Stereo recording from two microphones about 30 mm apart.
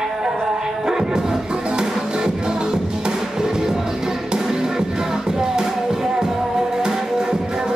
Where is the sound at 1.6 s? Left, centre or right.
Right.